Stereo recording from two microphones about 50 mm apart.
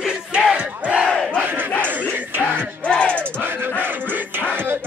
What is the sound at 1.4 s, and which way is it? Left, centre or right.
Battle cry, right.